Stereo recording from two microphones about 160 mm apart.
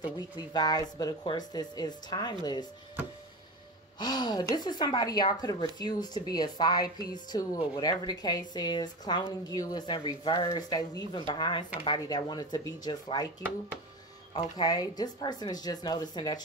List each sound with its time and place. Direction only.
0.0 s a woman's voice: 25° left (ahead or behind)
4.0 s a woman's voice: 25° left (ahead or behind)
14.3 s a woman's voice: 25° left (ahead or behind)